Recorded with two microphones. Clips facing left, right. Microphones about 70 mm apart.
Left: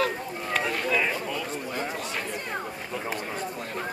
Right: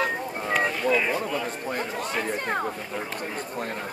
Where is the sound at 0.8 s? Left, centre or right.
Centre.